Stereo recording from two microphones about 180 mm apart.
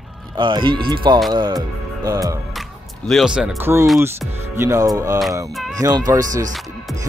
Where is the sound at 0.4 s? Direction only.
25° right (ahead or behind).